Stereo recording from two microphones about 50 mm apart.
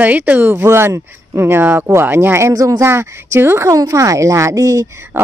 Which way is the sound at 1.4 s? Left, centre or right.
Right.